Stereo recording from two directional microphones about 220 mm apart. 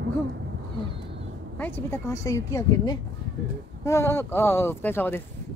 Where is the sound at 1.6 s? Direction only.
10° left (ahead or behind).